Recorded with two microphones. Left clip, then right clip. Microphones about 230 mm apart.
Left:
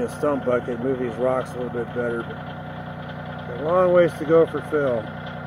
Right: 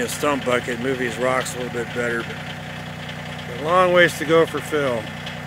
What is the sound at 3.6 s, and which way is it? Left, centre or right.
Speech, right.